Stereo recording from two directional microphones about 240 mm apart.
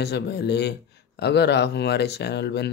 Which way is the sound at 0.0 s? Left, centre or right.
Left.